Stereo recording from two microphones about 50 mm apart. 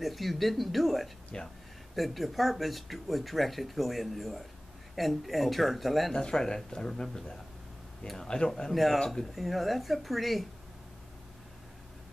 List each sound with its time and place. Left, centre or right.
0.0 s speech: centre
1.3 s speech: centre
2.0 s speech: centre
6.1 s speech: centre